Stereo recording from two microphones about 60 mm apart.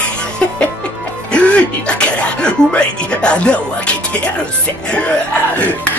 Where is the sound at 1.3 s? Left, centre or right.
Centre.